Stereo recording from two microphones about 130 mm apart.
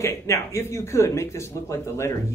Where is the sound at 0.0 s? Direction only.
20° left (ahead or behind).